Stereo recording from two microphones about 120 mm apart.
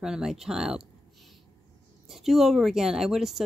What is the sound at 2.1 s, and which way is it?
Speech, centre (ahead or behind).